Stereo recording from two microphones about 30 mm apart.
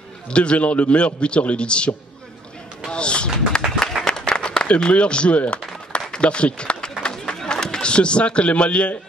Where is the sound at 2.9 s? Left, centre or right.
Left.